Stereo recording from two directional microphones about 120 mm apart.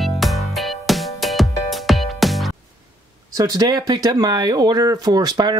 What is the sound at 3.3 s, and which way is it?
Speech, 30° right (ahead or behind).